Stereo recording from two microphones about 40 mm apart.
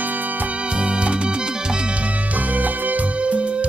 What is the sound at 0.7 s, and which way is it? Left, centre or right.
Music, right.